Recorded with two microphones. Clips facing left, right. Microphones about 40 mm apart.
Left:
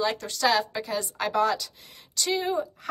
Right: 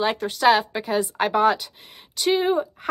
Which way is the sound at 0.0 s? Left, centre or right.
Right.